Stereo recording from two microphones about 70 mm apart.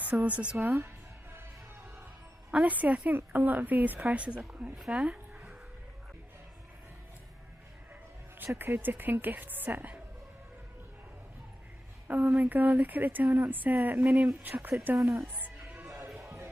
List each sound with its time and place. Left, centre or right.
0.0 s speech: right
0.7 s music: right
2.5 s a woman's voice: right
8.5 s speech: right
12.1 s speech: right